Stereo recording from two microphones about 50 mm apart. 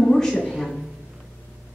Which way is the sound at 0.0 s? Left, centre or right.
Centre.